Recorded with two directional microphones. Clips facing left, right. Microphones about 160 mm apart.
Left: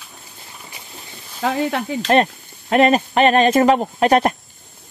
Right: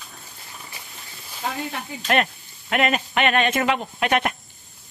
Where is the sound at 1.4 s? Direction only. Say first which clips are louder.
Left 9 dB; 80° left.